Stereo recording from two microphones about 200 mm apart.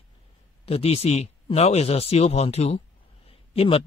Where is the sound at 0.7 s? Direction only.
30° left (ahead or behind).